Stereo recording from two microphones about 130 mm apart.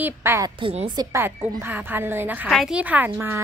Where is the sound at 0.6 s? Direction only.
40° right (ahead or behind).